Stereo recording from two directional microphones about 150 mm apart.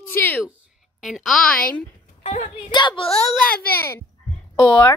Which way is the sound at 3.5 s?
90° left.